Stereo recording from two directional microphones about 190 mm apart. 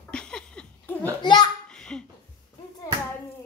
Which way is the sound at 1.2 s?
25° left (ahead or behind).